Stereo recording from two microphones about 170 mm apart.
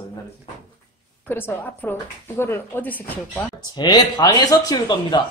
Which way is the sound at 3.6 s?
25° left (ahead or behind).